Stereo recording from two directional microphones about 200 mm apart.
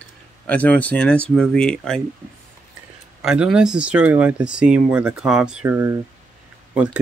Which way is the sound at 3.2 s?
5° right (ahead or behind).